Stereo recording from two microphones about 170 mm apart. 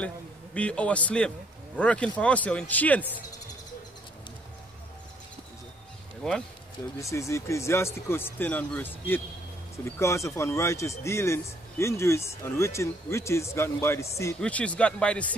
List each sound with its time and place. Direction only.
0.6 s speech: 5° left (ahead or behind)
7.0 s speech: 15° left (ahead or behind)